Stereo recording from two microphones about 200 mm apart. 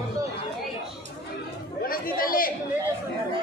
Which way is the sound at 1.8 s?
45° left (ahead or behind).